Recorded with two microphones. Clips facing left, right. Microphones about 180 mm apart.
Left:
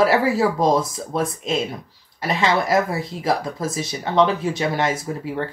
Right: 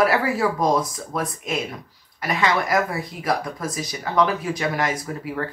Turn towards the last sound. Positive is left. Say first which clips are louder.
# left 2 dB
turn(degrees=25)  # may be behind; listen again after turning